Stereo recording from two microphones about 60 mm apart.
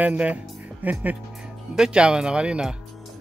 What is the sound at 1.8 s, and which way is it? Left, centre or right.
Speech, centre.